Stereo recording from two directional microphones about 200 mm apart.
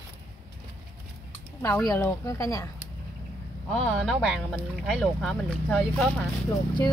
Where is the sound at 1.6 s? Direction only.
10° left (ahead or behind).